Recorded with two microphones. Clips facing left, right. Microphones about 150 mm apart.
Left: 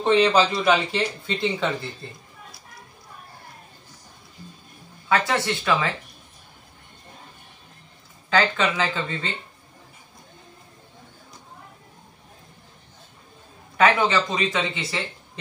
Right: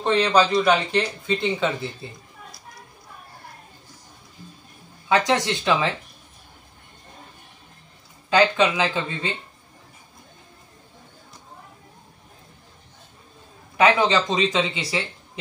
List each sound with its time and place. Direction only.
0.0 s a man's voice: 5° left (ahead or behind)
5.0 s speech: 15° right (ahead or behind)
8.3 s speech: 15° right (ahead or behind)
13.7 s speech: 15° right (ahead or behind)